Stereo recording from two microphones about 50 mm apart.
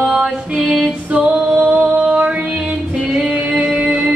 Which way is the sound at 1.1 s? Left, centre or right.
Right.